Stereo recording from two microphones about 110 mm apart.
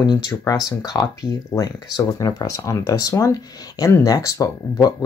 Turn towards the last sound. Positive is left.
turn(degrees=35)  # may be behind; listen again after turning